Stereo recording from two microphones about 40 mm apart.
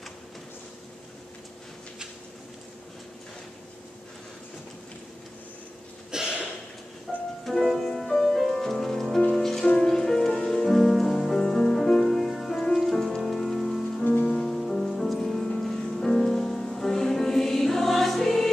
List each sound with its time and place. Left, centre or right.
6.1 s a sound: centre
7.1 s music: centre
14.2 s music: centre